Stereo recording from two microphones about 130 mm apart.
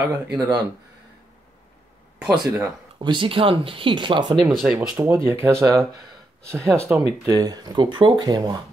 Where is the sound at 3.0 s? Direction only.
40° right (ahead or behind).